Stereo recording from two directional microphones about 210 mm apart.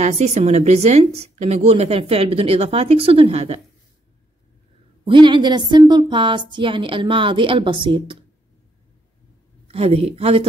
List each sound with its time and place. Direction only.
0.0 s a woman's voice: 30° right (ahead or behind)
5.0 s a woman's voice: 25° right (ahead or behind)
9.7 s a woman's voice: 30° right (ahead or behind)